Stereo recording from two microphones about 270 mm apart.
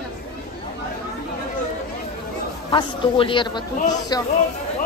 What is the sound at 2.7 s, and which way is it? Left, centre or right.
Speech, centre.